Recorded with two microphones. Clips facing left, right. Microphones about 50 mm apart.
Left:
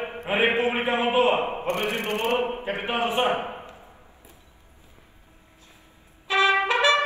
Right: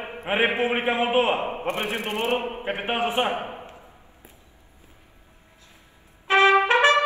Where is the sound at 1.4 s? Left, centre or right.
Left.